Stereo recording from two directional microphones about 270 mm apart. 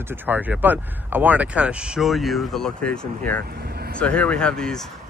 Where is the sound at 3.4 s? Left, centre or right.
Right.